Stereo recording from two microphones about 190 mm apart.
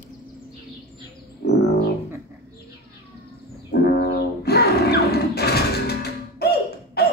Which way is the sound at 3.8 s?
55° left (ahead or behind).